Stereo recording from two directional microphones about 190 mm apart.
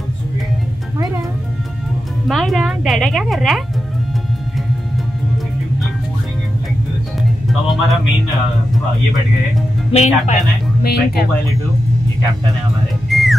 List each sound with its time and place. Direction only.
2.2 s a woman's voice: centre (ahead or behind)
7.4 s music: centre (ahead or behind)
9.9 s speech: 40° left (ahead or behind)
10.8 s speech: 55° left (ahead or behind)
13.1 s music: centre (ahead or behind)